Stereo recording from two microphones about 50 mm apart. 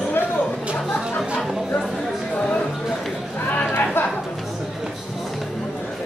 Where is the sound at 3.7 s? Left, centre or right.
Left.